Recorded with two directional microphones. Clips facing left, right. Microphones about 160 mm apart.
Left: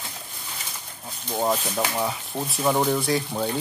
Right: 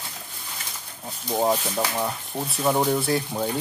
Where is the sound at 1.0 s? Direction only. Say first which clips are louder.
Right 2 dB; 10° right (ahead or behind).